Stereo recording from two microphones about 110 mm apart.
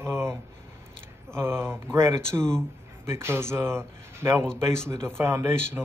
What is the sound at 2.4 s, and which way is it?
Speech, 5° left (ahead or behind).